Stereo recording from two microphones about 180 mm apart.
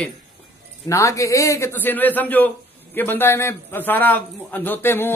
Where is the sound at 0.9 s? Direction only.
15° left (ahead or behind).